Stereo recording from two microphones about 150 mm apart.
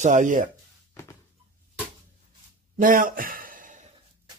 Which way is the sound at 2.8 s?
65° right (ahead or behind).